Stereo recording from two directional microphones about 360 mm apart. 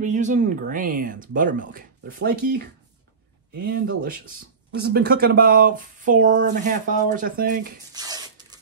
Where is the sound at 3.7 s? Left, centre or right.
Right.